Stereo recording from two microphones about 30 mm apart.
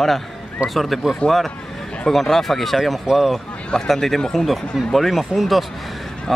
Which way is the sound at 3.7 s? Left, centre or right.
Left.